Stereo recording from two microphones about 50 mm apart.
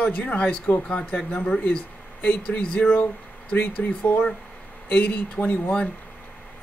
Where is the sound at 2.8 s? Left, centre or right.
Left.